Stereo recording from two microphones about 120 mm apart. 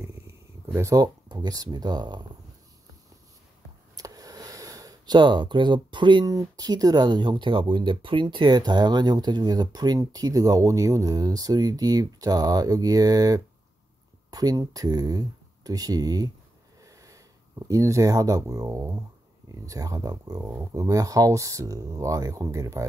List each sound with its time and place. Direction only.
0.7 s speech: 30° right (ahead or behind)
3.9 s speech: 30° right (ahead or behind)
16.8 s a sound: 30° right (ahead or behind)
17.6 s speech: 25° right (ahead or behind)